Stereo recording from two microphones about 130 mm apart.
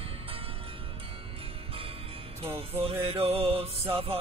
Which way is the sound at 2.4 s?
50° right (ahead or behind).